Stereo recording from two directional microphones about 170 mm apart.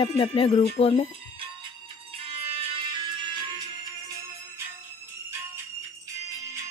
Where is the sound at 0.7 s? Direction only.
35° left (ahead or behind).